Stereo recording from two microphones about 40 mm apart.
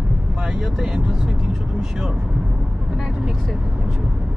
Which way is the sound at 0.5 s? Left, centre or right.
Right.